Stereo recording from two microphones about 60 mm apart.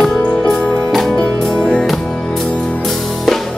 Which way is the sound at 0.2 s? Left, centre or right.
Left.